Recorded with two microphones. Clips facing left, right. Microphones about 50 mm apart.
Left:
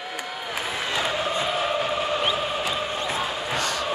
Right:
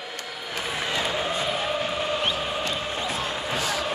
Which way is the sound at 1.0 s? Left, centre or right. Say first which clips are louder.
Left 3 dB; centre.